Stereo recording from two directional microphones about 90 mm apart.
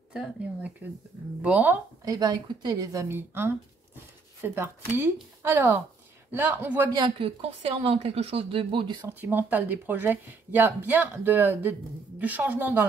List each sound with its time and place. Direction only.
0.8 s speech: 20° right (ahead or behind)
2.0 s speech: 45° right (ahead or behind)
3.1 s speech: 25° right (ahead or behind)
7.2 s a woman's voice: 90° right; by 9.0 s 65° right (ahead or behind)
9.0 s speech: 20° right (ahead or behind)